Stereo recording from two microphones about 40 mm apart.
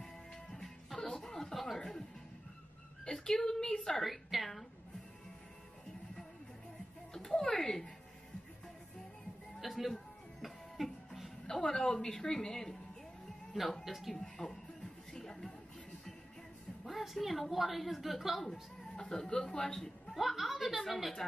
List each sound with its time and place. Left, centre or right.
0.0 s music: centre
3.1 s a woman's voice: centre
4.0 s a sound: centre
7.2 s a sound: centre
9.6 s a sound: centre
10.8 s music: centre
11.4 s a woman's voice: centre
14.1 s speech: centre
15.1 s music: centre
16.8 s a woman's voice: centre
18.5 s speech: centre
20.2 s a woman's voice: centre